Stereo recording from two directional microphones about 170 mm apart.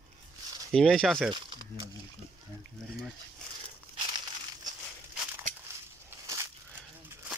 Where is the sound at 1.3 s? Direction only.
30° right (ahead or behind).